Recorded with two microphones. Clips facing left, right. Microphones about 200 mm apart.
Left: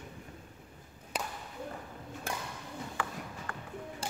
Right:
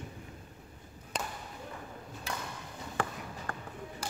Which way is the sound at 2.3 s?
50° left (ahead or behind).